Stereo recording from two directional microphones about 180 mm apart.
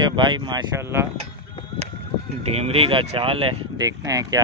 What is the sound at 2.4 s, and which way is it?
Speech, 35° right (ahead or behind).